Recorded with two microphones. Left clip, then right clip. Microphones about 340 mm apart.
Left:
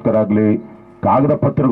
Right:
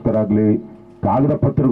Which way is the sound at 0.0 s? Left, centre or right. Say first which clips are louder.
Left 3 dB; centre.